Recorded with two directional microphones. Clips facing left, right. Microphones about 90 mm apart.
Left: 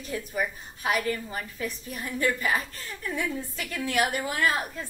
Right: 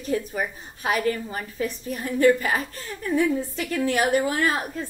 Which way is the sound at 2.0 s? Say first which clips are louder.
Right 8 dB; 30° right (ahead or behind).